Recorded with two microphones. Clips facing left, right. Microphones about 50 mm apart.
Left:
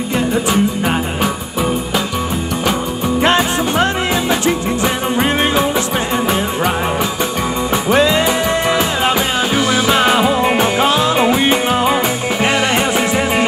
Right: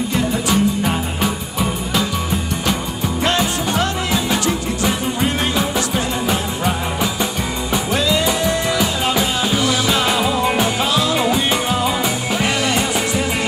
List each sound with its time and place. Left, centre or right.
0.1 s music: centre
2.7 s music: left
7.7 s music: left